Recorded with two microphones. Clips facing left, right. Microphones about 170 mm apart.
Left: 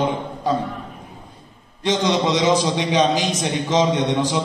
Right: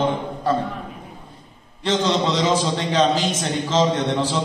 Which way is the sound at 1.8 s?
15° left (ahead or behind).